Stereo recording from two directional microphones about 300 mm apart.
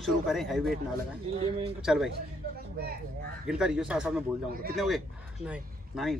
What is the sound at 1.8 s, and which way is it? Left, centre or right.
Speech, centre.